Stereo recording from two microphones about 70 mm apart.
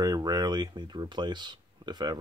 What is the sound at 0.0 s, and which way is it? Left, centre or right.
Speech, right.